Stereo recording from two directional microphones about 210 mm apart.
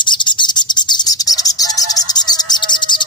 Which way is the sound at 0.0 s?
20° left (ahead or behind).